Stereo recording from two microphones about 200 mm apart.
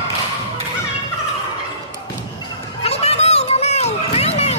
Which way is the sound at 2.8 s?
30° left (ahead or behind).